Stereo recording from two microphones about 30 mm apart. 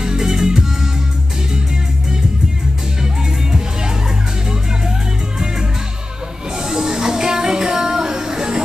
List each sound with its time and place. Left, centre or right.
0.0 s music: right
6.6 s music: centre